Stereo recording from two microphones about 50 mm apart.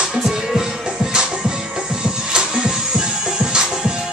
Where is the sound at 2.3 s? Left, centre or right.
Centre.